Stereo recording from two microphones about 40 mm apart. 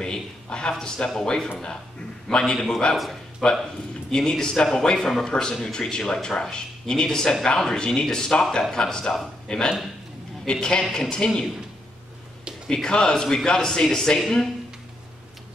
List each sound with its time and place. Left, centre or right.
0.0 s a man's voice: left
2.5 s speech: centre
4.1 s speech: centre
12.6 s speech: centre